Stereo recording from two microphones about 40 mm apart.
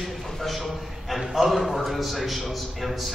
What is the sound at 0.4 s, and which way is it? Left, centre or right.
A man's voice, centre.